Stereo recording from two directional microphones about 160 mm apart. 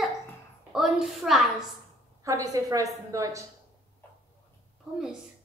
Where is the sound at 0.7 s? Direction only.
Centre (ahead or behind).